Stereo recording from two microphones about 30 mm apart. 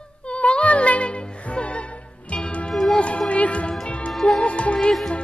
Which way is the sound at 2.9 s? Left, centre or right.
Left.